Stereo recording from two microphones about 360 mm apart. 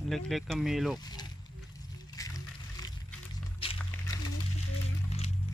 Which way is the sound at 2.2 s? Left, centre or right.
Centre.